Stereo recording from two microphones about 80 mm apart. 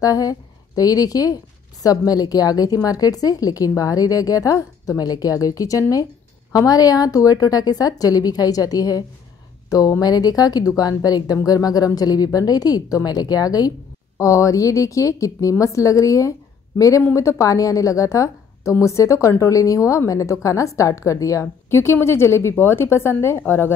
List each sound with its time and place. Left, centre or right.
0.0 s a woman's voice: left
14.1 s a woman's voice: left